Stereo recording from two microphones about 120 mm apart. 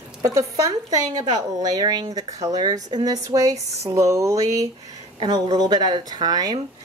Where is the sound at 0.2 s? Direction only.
30° right (ahead or behind).